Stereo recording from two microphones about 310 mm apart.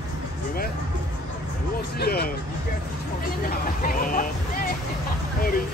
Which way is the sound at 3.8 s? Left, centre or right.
Left.